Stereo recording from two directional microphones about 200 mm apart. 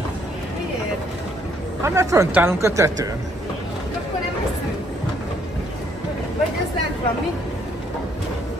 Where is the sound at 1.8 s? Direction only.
15° right (ahead or behind).